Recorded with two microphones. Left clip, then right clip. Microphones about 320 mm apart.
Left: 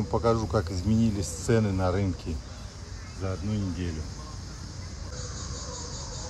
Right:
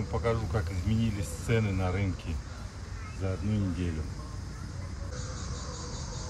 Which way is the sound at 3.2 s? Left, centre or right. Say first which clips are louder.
Left 1 dB; centre.